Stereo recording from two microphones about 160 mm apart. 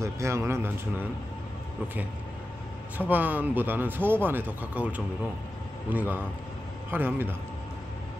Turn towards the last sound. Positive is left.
turn(degrees=-10)  # may be behind; listen again after turning